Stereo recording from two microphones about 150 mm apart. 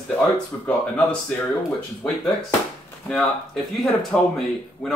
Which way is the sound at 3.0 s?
Centre (ahead or behind).